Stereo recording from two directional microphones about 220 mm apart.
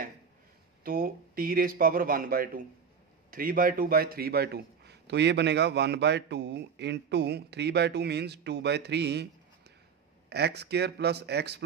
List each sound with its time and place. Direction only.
0.8 s a man's voice: 40° right (ahead or behind)
10.3 s a man's voice: 50° right (ahead or behind)